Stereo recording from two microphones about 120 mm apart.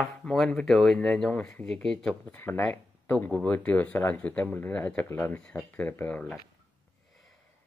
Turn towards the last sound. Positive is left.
turn(degrees=15)  # may be behind; listen again after turning